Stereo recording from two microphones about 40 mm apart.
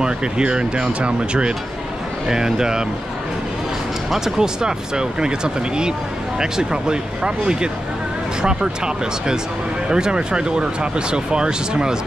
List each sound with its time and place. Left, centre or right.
0.0 s speech: right
4.1 s speech: centre